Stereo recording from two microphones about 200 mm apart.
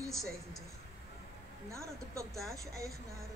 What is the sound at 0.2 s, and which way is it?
Speech, centre (ahead or behind).